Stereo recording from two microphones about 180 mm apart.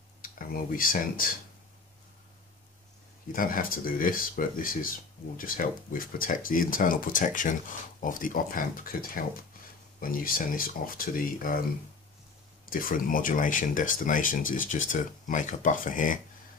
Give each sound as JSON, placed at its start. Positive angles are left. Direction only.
{"t": 0.2, "sound": "speech", "side_deg": 50}
{"t": 3.3, "sound": "speech", "side_deg": 50}
{"t": 12.6, "sound": "speech", "side_deg": 50}